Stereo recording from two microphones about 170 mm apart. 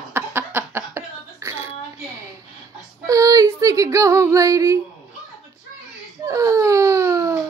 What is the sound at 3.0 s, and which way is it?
Female singing, 20° right (ahead or behind).